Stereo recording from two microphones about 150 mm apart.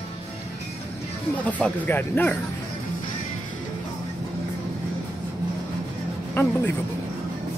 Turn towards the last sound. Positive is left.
turn(degrees=15)  # may be behind; listen again after turning